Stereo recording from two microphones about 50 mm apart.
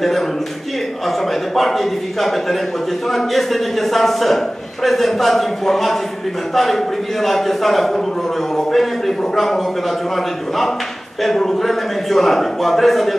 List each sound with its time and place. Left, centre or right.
1.5 s a man's voice: centre
11.2 s a man's voice: centre